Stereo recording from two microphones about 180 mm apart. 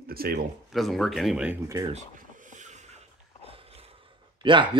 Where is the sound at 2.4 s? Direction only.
45° right (ahead or behind).